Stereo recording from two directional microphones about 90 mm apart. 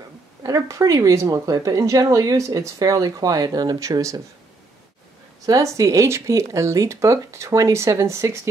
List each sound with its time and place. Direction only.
0.4 s speech: 40° right (ahead or behind)
5.5 s speech: 35° right (ahead or behind)